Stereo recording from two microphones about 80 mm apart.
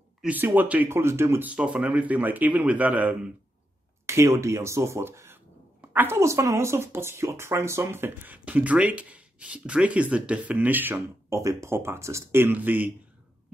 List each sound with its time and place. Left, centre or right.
0.3 s speech: right
0.8 s speech: right
1.4 s speech: centre
4.0 s speech: right
11.2 s speech: right